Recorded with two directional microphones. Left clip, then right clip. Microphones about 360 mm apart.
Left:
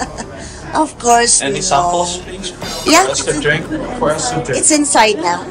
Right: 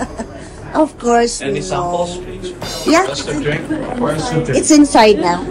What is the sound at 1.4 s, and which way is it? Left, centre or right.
Speech, centre.